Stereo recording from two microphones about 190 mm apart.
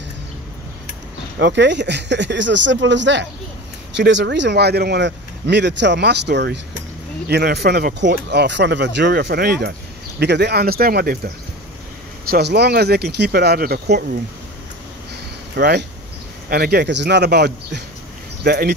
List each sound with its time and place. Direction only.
1.4 s speech: 65° right (ahead or behind)
15.5 s speech: 60° right (ahead or behind)